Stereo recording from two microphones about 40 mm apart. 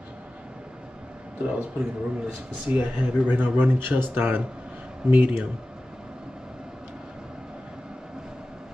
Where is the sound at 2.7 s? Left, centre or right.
Right.